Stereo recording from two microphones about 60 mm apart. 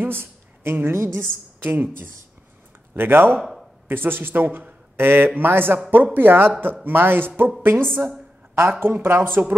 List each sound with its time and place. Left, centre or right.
0.0 s a woman's voice: right
3.3 s speech: centre
3.9 s a man's voice: right